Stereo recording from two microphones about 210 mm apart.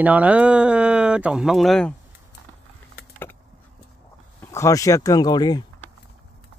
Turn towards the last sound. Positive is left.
turn(degrees=20)  # may be behind; listen again after turning